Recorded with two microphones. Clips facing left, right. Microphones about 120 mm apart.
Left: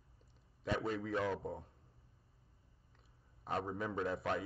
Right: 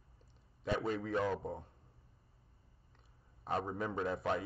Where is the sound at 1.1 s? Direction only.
35° right (ahead or behind).